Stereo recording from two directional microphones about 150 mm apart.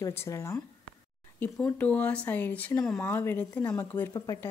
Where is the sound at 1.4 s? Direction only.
10° left (ahead or behind).